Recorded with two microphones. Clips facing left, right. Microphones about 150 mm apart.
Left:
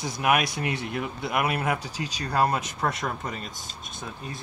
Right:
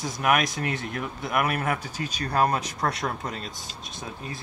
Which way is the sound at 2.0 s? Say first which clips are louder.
Right 2 dB; 55° right (ahead or behind).